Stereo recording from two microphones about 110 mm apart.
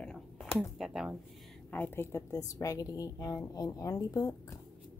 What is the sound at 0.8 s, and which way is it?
Speech, 5° right (ahead or behind).